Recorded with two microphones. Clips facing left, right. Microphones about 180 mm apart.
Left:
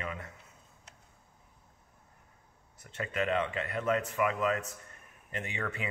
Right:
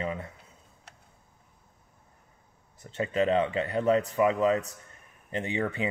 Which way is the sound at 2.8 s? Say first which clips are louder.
Right 7 dB; 30° right (ahead or behind).